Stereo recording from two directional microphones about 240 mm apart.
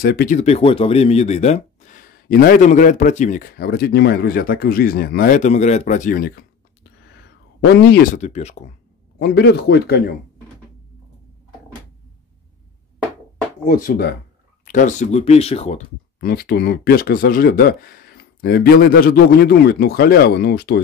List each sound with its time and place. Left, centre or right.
0.0 s speech: left
9.2 s speech: left
13.7 s speech: left
16.2 s speech: left